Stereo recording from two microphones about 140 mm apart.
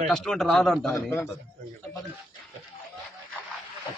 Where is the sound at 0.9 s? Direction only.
20° left (ahead or behind).